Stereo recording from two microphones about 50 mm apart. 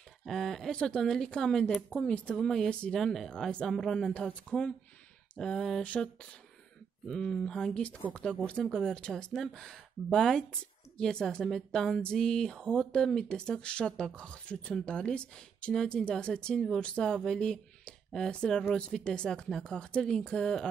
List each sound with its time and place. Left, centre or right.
0.2 s speech: centre; by 2.3 s left
2.3 s speech: centre
4.1 s speech: left
5.4 s speech: centre
5.8 s speech: left
7.1 s speech: centre